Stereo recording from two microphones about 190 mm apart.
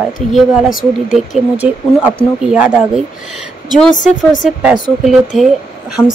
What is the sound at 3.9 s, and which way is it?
Speech, 40° left (ahead or behind).